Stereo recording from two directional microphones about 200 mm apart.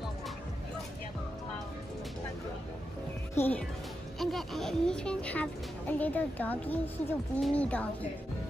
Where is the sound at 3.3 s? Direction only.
10° left (ahead or behind).